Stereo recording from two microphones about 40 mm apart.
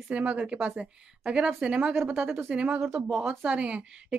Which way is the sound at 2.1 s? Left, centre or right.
Centre.